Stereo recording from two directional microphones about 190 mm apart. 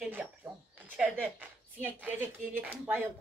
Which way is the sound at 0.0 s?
10° right (ahead or behind).